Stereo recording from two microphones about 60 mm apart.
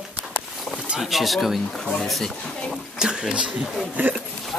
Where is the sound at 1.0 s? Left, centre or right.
Centre.